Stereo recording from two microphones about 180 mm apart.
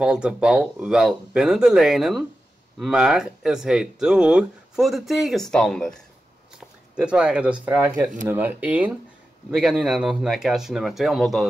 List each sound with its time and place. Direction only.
0.0 s speech: 5° right (ahead or behind)